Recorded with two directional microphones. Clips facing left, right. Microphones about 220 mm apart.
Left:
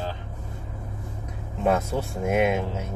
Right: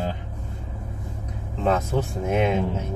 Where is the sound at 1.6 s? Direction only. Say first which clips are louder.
Right 1 dB; 10° left (ahead or behind).